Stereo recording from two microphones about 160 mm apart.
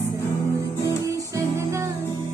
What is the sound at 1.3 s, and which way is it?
Music, 20° right (ahead or behind).